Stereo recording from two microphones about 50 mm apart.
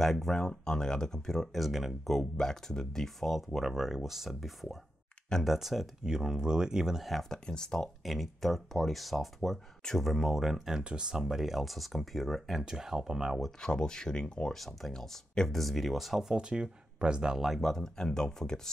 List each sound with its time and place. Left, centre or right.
0.0 s speech: centre
2.3 s speech: centre
7.2 s speech: centre
8.0 s speech: centre
10.8 s speech: centre
12.6 s speech: centre
13.6 s speech: centre
16.3 s speech: centre
17.4 s speech: centre